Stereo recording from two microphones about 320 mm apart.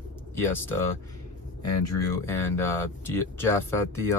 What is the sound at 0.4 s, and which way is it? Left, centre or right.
Speech, centre.